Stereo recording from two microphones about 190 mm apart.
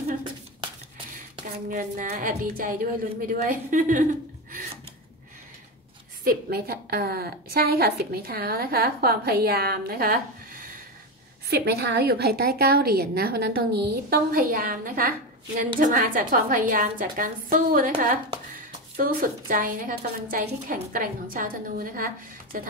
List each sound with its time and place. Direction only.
1.7 s a woman's voice: 40° right (ahead or behind)
6.2 s a woman's voice: 50° right (ahead or behind)